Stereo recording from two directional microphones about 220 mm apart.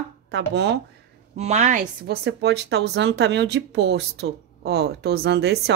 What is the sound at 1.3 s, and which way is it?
Speech, 30° right (ahead or behind).